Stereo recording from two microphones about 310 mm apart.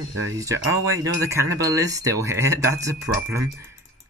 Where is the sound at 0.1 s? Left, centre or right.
Right.